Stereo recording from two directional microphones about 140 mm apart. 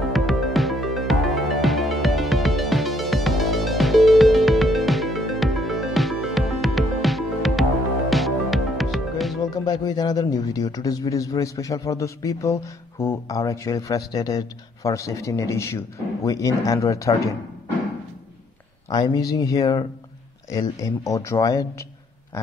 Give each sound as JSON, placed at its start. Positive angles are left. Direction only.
{"t": 0.1, "sound": "music", "side_deg": 0}
{"t": 9.5, "sound": "speech", "side_deg": 30}
{"t": 18.9, "sound": "speech", "side_deg": 30}